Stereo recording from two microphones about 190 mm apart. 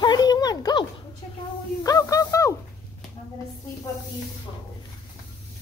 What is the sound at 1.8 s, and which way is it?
Speech, 15° left (ahead or behind).